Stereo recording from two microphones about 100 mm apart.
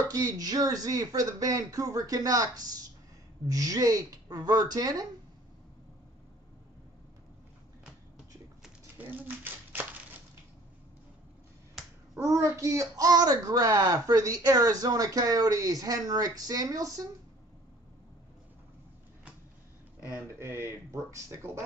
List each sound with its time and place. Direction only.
0.1 s a child's voice: 40° right (ahead or behind)
8.9 s a sound: 20° right (ahead or behind)
12.2 s a child's voice: 30° right (ahead or behind)
20.1 s speech: 25° right (ahead or behind)